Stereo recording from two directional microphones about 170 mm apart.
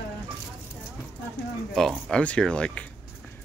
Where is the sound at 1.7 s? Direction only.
Centre (ahead or behind).